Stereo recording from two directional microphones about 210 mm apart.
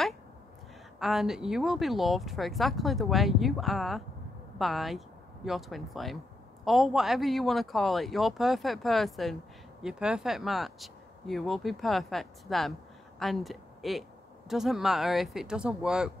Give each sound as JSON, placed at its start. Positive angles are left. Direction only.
{"t": 0.9, "sound": "a man's voice", "side_deg": 0}